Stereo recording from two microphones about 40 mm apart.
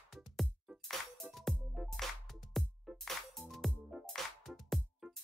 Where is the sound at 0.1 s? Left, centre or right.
Centre.